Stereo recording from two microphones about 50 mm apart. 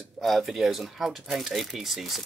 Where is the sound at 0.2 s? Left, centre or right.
Centre.